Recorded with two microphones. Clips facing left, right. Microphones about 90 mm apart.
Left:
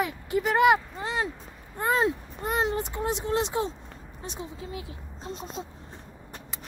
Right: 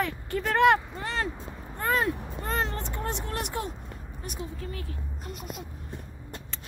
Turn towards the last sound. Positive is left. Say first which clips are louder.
# left 2 dB
turn(degrees=30)  # may be behind; listen again after turning